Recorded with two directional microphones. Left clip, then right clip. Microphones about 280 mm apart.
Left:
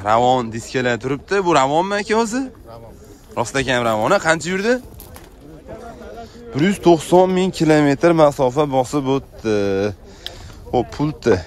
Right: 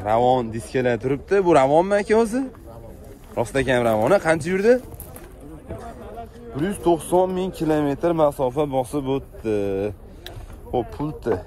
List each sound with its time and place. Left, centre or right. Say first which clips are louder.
0.0 s speech: left 3 dB; centre
6.6 s a man's voice: left 6 dB; left